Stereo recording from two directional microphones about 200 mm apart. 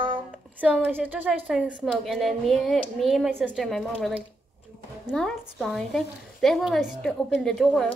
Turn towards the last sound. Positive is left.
turn(degrees=0)  # may be behind; listen again after turning